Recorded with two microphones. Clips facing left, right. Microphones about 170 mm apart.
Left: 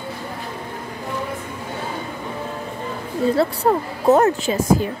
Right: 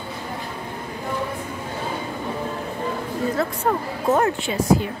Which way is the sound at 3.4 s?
35° left (ahead or behind).